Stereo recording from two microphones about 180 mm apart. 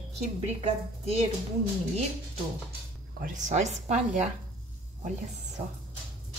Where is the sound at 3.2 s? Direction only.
45° right (ahead or behind).